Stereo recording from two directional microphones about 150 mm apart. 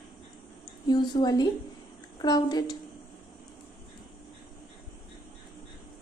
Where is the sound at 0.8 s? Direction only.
30° left (ahead or behind).